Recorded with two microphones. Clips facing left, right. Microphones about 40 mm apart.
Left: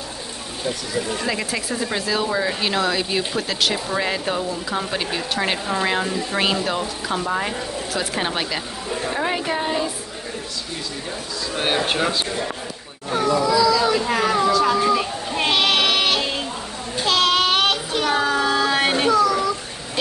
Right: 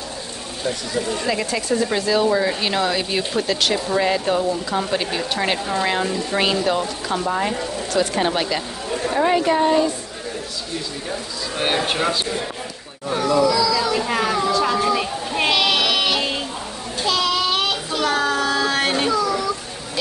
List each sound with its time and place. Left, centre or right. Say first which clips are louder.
1.1 s speech: right 2 dB; centre
11.5 s speech: even; centre
13.2 s children playing: even; left
14.0 s a sound: left 1 dB; centre
14.9 s children playing: even; centre
15.5 s sheep: left 1 dB; left
15.9 s music: even; left
17.0 s child singing: left 2 dB; left
18.1 s a sound: left 2 dB; centre
19.1 s children playing: left 3 dB; left